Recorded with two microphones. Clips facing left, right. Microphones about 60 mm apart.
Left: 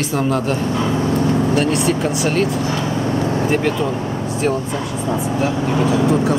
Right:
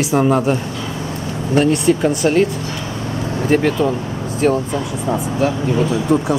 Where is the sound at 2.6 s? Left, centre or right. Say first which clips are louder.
Left 5 dB; left.